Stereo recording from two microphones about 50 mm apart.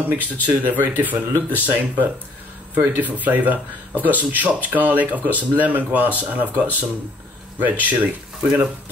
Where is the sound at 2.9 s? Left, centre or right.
Right.